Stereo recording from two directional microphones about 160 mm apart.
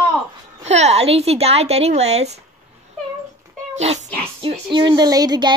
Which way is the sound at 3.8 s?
45° right (ahead or behind).